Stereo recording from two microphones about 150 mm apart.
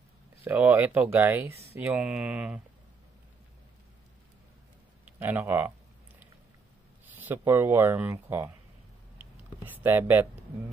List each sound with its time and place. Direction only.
0.4 s speech: 10° right (ahead or behind)
5.0 s speech: 10° right (ahead or behind)
7.2 s speech: 15° right (ahead or behind)
9.2 s a sound: 15° right (ahead or behind)